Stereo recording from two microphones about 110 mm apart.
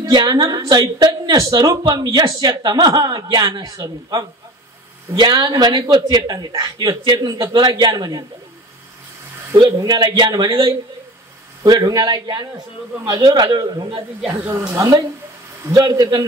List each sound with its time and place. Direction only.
0.0 s a woman's voice: 40° right (ahead or behind)
9.6 s a woman's voice: 40° right (ahead or behind)
14.3 s speech: 20° right (ahead or behind)
14.7 s a woman's voice: 35° right (ahead or behind)